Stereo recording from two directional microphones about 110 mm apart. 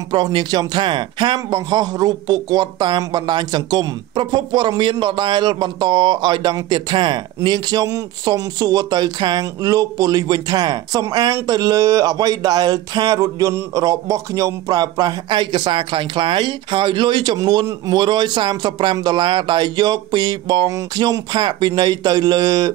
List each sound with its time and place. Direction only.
0.1 s speech: 40° right (ahead or behind)